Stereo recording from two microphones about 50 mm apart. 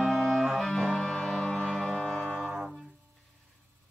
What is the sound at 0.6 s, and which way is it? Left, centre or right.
Music, centre.